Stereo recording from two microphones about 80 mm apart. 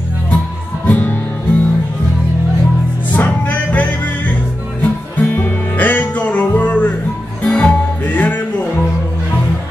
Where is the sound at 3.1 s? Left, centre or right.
Left.